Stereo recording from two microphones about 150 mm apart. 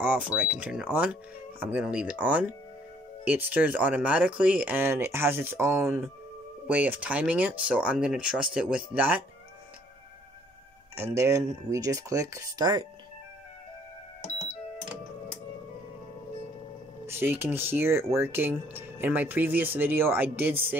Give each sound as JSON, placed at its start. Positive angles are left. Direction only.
{"t": 0.0, "sound": "speech", "side_deg": -10}
{"t": 11.0, "sound": "speech", "side_deg": -20}
{"t": 17.0, "sound": "speech", "side_deg": -15}